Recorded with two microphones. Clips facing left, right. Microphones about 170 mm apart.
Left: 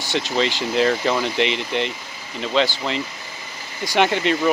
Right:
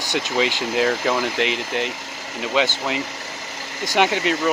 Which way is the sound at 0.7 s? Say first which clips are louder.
Left 1 dB; 5° right (ahead or behind).